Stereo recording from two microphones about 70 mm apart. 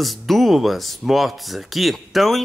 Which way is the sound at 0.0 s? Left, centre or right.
Centre.